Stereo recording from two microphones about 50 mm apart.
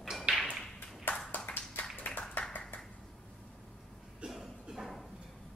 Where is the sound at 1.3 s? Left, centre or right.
Left.